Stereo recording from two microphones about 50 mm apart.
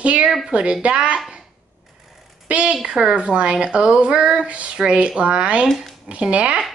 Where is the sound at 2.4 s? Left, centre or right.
Right.